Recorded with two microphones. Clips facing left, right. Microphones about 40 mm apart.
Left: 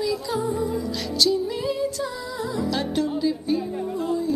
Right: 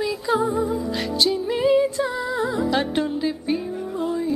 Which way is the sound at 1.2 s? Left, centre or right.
Right.